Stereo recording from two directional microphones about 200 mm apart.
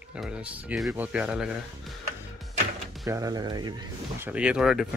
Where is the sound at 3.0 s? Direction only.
15° right (ahead or behind).